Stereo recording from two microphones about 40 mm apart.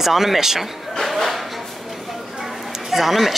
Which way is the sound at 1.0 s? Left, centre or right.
Centre.